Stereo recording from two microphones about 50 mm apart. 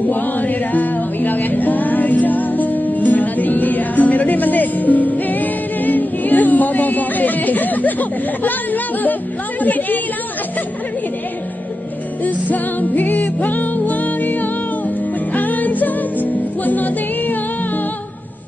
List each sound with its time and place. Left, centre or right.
0.0 s music: left
9.6 s a woman's voice: left
12.4 s music: left